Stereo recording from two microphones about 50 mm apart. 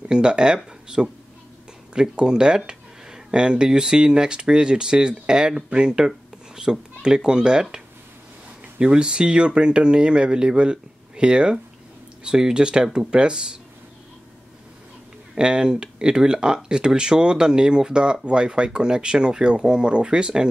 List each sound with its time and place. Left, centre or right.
0.1 s speech: centre
8.7 s speech: centre
15.3 s speech: centre